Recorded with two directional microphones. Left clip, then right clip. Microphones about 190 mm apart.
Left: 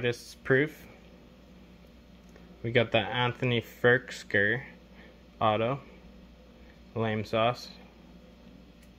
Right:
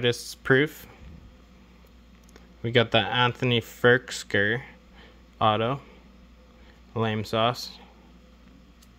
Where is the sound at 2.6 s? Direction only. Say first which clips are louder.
Right 4 dB; 40° right (ahead or behind).